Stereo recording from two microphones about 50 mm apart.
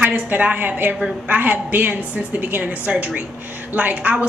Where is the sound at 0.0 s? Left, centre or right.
Right.